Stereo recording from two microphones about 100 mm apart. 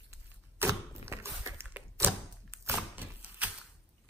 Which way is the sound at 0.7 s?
30° right (ahead or behind).